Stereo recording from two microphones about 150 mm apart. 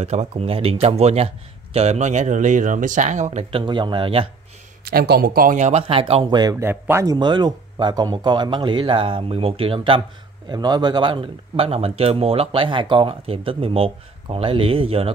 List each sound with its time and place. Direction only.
0.0 s speech: 45° right (ahead or behind)
3.6 s speech: 30° right (ahead or behind)
4.8 s speech: 85° right; by 6.5 s 30° right (ahead or behind)
6.5 s speech: 15° right (ahead or behind)
7.2 s speech: 30° right (ahead or behind)